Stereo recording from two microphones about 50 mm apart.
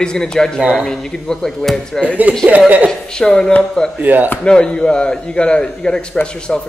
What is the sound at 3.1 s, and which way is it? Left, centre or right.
Speech, centre.